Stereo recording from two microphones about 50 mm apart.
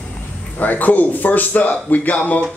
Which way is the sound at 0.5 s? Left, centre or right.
Left.